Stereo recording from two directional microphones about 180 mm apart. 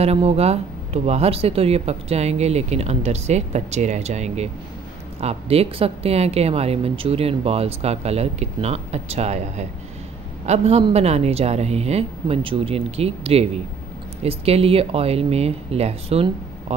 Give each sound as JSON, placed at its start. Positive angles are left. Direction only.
{"t": 0.0, "sound": "a woman's voice", "side_deg": -35}